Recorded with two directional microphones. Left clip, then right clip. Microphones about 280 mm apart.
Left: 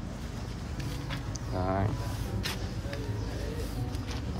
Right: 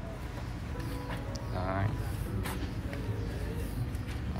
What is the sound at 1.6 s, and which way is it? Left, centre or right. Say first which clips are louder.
Speech: left 4 dB; centre.